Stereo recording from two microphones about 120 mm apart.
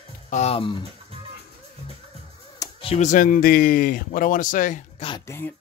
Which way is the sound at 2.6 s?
30° left (ahead or behind).